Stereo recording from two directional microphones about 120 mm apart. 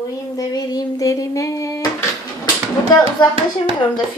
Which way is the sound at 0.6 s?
30° left (ahead or behind).